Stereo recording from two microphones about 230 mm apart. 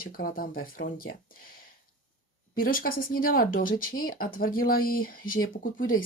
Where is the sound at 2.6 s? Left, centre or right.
Left.